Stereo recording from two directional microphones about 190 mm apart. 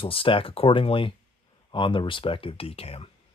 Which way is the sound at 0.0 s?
30° left (ahead or behind).